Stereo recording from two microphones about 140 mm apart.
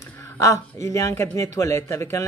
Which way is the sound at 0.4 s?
20° left (ahead or behind).